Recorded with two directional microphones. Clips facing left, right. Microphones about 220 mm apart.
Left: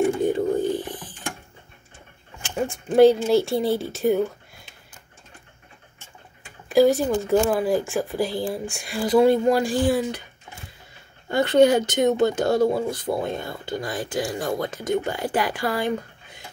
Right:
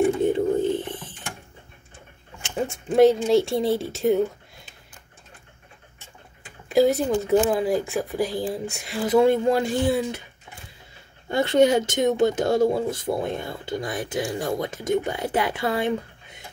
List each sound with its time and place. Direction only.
0.2 s a sound: 25° right (ahead or behind)
2.4 s speech: 25° right (ahead or behind)
6.7 s speech: 25° right (ahead or behind)
11.2 s speech: 25° right (ahead or behind)